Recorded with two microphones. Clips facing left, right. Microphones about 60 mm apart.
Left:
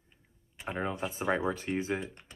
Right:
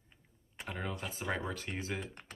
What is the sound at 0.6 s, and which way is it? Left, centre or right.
Speech, left.